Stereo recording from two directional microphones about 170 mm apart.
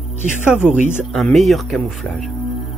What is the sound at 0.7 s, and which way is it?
Speech, 45° right (ahead or behind).